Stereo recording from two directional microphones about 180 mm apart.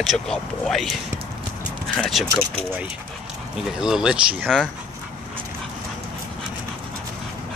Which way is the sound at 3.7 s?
5° right (ahead or behind).